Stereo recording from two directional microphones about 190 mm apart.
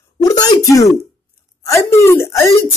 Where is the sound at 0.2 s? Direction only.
20° left (ahead or behind).